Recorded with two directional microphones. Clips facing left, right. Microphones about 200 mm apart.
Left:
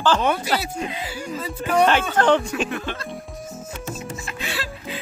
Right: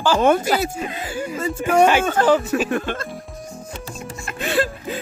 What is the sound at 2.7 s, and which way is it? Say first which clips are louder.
Speech: right 6 dB; 50° right (ahead or behind).